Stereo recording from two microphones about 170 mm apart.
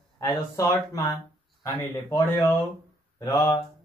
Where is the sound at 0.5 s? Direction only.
15° left (ahead or behind).